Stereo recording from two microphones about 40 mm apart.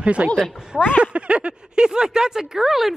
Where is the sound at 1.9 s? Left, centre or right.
Centre.